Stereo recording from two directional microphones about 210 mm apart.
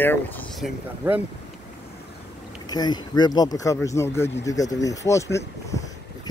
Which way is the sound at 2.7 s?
20° left (ahead or behind).